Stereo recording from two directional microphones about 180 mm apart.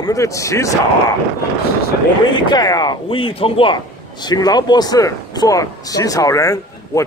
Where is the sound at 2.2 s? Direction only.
25° left (ahead or behind).